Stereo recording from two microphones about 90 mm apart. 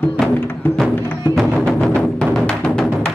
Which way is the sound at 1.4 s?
5° left (ahead or behind).